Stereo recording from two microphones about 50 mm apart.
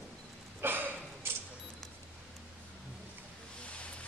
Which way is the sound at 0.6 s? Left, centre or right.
Right.